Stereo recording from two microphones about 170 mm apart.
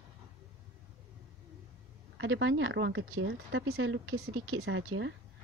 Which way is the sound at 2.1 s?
90° right.